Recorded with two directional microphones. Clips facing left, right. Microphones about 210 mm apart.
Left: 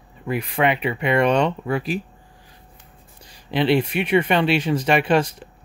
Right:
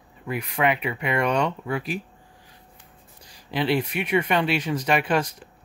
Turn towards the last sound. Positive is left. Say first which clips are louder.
# left 5 dB
turn(degrees=30)  # may be behind; listen again after turning